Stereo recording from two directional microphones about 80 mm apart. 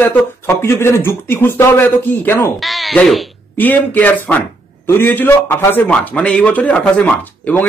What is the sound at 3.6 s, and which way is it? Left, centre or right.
Speech, left.